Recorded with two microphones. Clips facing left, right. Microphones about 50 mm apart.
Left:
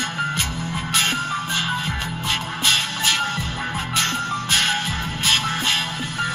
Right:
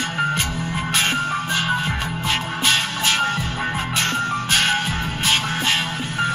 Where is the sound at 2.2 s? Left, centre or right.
Right.